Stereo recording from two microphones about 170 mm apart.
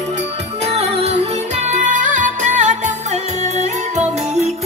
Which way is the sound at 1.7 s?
45° right (ahead or behind).